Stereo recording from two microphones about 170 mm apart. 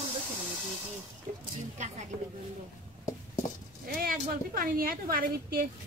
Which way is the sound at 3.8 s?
60° right (ahead or behind).